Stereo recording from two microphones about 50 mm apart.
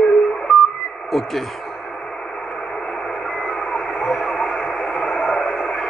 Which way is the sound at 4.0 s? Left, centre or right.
Centre.